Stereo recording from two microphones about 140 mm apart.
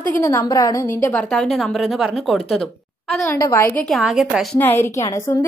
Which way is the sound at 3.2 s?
20° left (ahead or behind).